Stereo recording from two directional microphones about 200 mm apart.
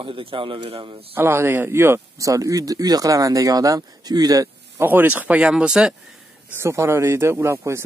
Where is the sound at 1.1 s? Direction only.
10° right (ahead or behind).